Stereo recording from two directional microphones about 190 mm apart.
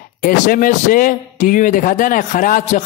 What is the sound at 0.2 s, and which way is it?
Speech, 45° left (ahead or behind).